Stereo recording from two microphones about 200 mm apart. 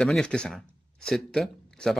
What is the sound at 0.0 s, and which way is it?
Speech, 5° left (ahead or behind).